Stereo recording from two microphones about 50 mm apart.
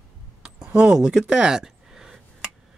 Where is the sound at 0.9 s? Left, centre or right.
Centre.